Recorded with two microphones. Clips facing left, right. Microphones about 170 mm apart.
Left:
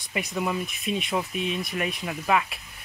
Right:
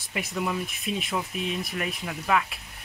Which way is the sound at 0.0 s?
Centre (ahead or behind).